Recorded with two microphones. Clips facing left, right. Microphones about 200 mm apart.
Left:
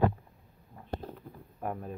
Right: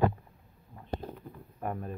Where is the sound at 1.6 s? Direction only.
Centre (ahead or behind).